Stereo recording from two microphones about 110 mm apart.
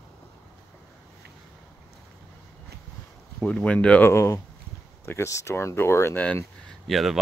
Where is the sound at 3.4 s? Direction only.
10° left (ahead or behind).